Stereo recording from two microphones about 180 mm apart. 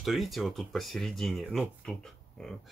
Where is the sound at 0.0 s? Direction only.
Centre (ahead or behind).